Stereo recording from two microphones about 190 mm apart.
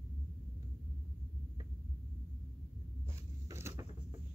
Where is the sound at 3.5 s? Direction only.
15° right (ahead or behind).